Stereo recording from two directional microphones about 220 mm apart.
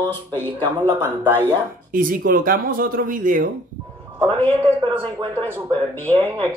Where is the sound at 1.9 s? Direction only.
40° right (ahead or behind).